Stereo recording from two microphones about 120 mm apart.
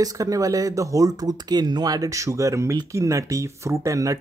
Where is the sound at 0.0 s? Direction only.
30° right (ahead or behind).